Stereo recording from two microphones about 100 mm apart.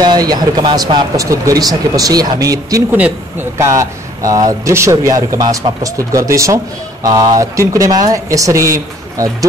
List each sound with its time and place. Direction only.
0.0 s speech: 45° right (ahead or behind)